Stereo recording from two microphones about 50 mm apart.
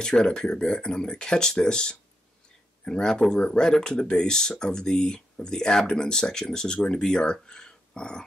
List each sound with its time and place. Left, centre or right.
0.0 s speech: centre